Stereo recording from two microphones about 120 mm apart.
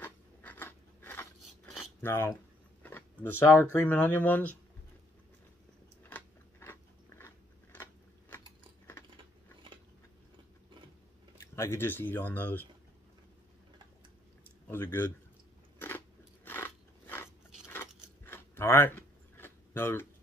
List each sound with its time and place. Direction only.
0.0 s a sound: 15° left (ahead or behind)
1.4 s dog: centre (ahead or behind)
2.0 s speech: 20° left (ahead or behind)
6.0 s biting: 15° left (ahead or behind)
11.5 s speech: 20° left (ahead or behind)
14.7 s speech: 20° left (ahead or behind)
16.4 s biting: 15° left (ahead or behind)